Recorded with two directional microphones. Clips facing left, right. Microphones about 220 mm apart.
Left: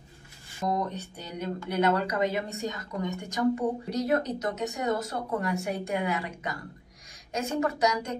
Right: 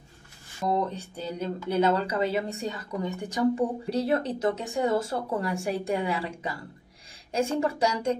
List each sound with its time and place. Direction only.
0.8 s a woman's voice: 30° right (ahead or behind)